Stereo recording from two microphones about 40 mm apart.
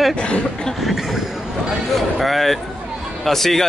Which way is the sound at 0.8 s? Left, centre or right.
Centre.